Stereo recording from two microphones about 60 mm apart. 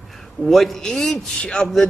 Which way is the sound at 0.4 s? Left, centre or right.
Centre.